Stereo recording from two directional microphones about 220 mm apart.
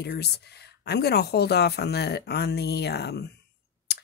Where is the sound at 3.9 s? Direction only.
50° left (ahead or behind).